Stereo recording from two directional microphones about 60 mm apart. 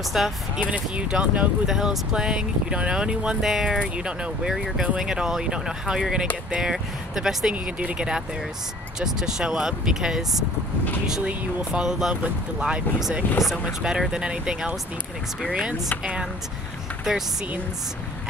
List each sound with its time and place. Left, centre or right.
0.1 s speech: centre
0.6 s speech: centre
13.4 s speech: centre
16.0 s speech: centre